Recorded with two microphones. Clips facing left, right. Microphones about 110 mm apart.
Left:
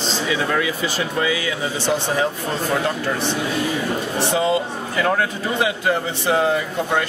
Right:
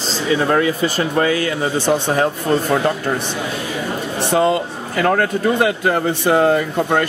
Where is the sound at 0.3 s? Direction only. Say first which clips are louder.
Right 7 dB; 45° right (ahead or behind).